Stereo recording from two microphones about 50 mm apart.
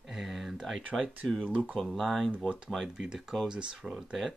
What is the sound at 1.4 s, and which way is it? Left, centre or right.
Speech, right.